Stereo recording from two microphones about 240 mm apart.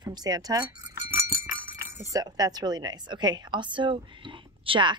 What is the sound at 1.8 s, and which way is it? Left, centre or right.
Speech, centre.